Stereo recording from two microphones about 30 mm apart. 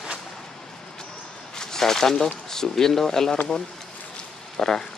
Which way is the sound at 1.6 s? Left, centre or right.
Centre.